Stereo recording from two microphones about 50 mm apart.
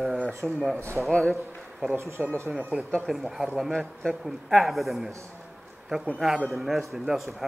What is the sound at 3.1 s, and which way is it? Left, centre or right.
A man's voice, centre.